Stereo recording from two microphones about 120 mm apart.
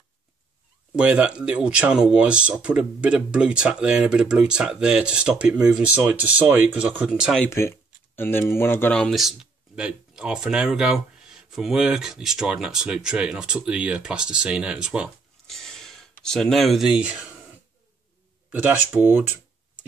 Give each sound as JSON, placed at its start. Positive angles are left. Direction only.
{"t": 0.9, "sound": "speech", "side_deg": -10}
{"t": 7.4, "sound": "speech", "side_deg": 20}
{"t": 8.9, "sound": "speech", "side_deg": 5}
{"t": 15.4, "sound": "speech", "side_deg": 5}
{"t": 18.5, "sound": "speech", "side_deg": -15}